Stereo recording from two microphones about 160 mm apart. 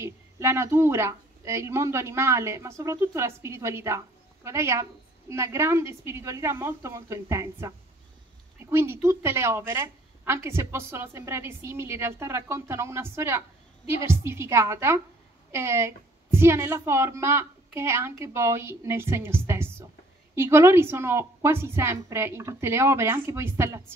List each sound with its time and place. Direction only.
0.0 s a woman's voice: 15° right (ahead or behind)